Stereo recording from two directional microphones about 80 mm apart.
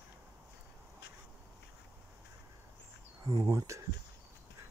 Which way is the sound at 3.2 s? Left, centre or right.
Right.